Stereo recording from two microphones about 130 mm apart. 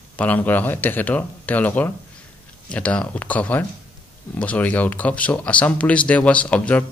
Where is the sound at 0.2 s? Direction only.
15° left (ahead or behind).